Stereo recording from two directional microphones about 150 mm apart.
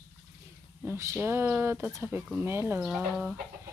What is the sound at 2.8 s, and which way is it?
Speech, 5° right (ahead or behind).